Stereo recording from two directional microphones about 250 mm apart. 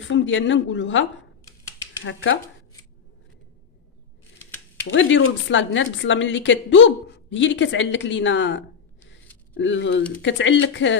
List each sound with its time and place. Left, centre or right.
0.1 s a woman's voice: left
4.8 s a woman's voice: left